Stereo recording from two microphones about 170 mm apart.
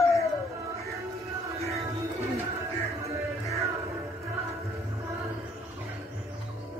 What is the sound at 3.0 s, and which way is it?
Music, 20° right (ahead or behind).